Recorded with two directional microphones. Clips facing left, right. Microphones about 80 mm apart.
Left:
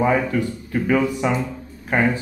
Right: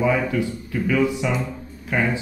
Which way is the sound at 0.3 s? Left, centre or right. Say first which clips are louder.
Left 2 dB; left.